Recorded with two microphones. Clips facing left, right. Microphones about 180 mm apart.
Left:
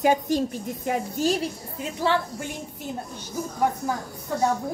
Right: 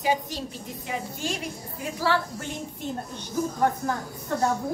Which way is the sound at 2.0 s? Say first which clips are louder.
Left 2 dB; 20° left (ahead or behind).